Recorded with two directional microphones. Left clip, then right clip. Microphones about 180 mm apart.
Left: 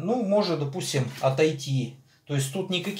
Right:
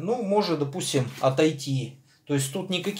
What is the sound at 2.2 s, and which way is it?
Speech, 45° right (ahead or behind).